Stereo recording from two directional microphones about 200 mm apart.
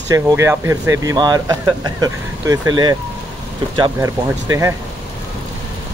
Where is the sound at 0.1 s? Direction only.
15° right (ahead or behind).